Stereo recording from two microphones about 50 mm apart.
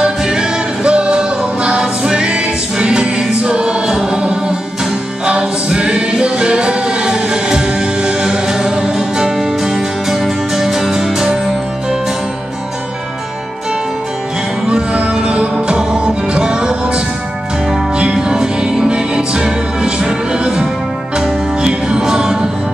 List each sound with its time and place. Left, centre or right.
0.0 s music: centre
5.2 s choir: right
14.7 s music: centre